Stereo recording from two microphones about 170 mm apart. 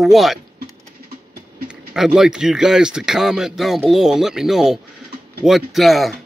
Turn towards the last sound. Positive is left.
turn(degrees=0)  # may be behind; listen again after turning